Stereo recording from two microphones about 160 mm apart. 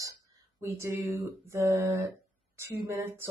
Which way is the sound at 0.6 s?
15° right (ahead or behind).